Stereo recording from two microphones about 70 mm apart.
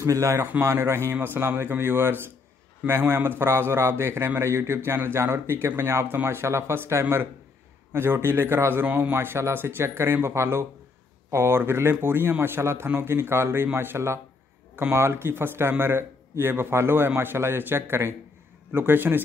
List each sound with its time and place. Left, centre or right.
0.0 s a man's voice: right